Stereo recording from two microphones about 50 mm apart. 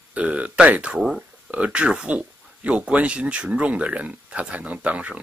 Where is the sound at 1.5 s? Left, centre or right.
Right.